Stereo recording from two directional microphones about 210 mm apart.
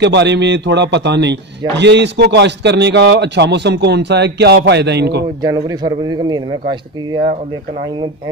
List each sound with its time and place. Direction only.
0.0 s a man's voice: 55° right (ahead or behind)
5.4 s a man's voice: 15° right (ahead or behind)